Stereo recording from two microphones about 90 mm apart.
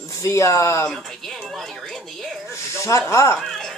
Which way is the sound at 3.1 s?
30° left (ahead or behind).